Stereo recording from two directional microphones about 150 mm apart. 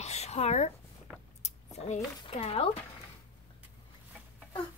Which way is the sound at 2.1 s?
35° left (ahead or behind).